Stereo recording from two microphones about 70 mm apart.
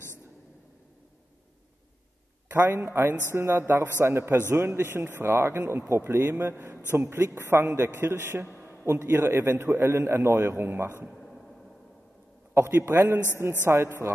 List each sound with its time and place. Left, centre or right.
2.5 s a man's voice: right
11.1 s a sound: centre
12.5 s a man's voice: right